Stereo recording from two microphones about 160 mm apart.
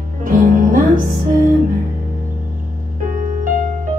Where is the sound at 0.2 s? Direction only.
60° right (ahead or behind).